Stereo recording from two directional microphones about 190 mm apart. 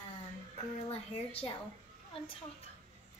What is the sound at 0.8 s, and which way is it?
Speech, 30° left (ahead or behind).